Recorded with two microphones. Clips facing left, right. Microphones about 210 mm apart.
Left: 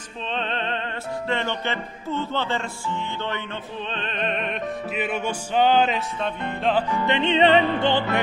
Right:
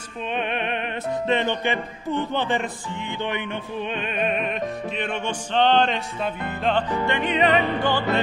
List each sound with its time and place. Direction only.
0.3 s a man's voice: 15° right (ahead or behind)
3.9 s a man's voice: 10° right (ahead or behind)
4.9 s music: 5° left (ahead or behind)
7.1 s music: 25° left (ahead or behind)